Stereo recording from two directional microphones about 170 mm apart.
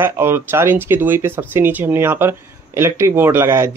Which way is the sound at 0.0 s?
15° right (ahead or behind).